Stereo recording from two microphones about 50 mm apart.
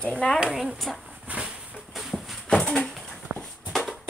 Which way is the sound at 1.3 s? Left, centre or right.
Right.